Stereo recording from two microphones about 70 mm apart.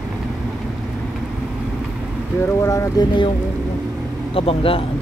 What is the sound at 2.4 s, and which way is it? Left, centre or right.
Speech, left.